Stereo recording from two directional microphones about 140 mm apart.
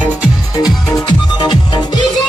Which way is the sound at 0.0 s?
10° right (ahead or behind).